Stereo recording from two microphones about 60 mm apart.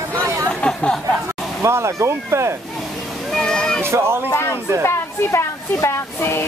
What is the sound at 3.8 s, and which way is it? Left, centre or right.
Speech, right.